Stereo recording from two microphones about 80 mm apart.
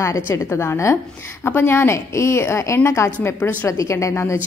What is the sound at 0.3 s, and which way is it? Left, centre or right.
A woman's voice, left.